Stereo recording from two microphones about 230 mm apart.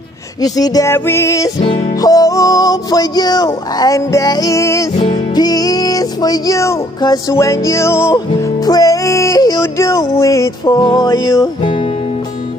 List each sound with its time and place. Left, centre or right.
0.4 s music: centre
11.6 s music: left